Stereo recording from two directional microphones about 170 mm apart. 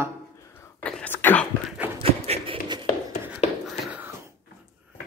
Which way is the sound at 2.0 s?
35° right (ahead or behind).